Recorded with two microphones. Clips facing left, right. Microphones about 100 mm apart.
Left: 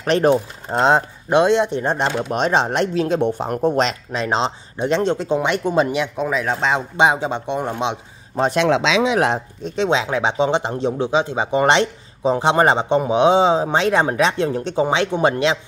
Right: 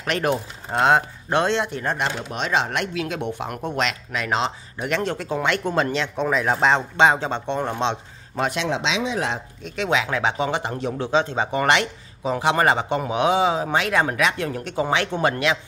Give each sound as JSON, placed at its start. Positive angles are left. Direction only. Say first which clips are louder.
{"t": 0.0, "sound": "speech", "louder": "left 7 dB", "side_deg": 30}
{"t": 2.1, "sound": "speech", "louder": "left 6 dB", "side_deg": 40}
{"t": 6.1, "sound": "speech", "louder": "even", "side_deg": 0}
{"t": 7.0, "sound": "speech", "louder": "left 3 dB", "side_deg": 15}
{"t": 8.6, "sound": "speech", "louder": "left 7 dB", "side_deg": 90}
{"t": 9.6, "sound": "speech", "louder": "left 2 dB", "side_deg": 30}